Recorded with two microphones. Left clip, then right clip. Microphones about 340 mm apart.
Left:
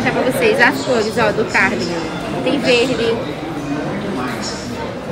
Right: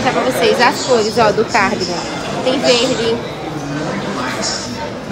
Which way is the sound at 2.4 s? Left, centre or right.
Right.